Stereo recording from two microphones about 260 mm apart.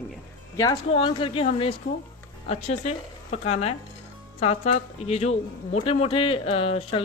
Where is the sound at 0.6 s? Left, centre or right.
Centre.